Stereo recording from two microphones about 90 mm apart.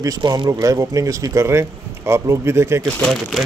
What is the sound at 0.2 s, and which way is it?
Speech, 60° right (ahead or behind).